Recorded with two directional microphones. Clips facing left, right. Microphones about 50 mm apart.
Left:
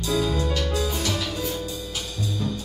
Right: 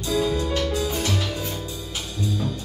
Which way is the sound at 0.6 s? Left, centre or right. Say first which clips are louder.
Right 1 dB; centre.